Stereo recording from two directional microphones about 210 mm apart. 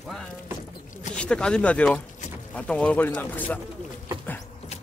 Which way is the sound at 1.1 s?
5° left (ahead or behind).